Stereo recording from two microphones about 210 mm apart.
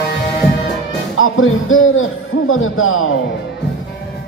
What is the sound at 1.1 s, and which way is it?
Speech, 75° left (ahead or behind).